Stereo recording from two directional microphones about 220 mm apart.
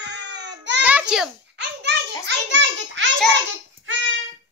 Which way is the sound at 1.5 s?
50° right (ahead or behind).